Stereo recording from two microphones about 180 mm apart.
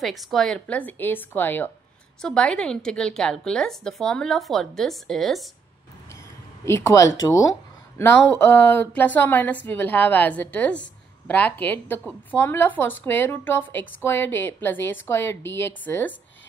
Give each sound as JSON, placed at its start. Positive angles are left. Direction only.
{"t": 0.0, "sound": "a woman's voice", "side_deg": 0}
{"t": 6.6, "sound": "a woman's voice", "side_deg": 15}